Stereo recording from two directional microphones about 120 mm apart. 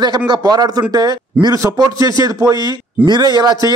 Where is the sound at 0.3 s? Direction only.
35° right (ahead or behind).